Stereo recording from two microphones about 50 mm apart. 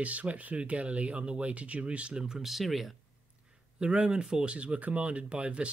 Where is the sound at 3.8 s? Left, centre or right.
Right.